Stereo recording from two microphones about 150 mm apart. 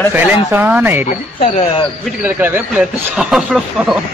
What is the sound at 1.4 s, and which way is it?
Speech, 40° left (ahead or behind).